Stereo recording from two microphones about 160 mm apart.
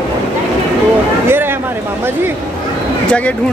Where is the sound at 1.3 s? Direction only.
15° right (ahead or behind).